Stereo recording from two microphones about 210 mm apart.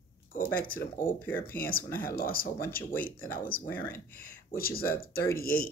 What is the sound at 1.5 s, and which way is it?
Speech, 45° left (ahead or behind).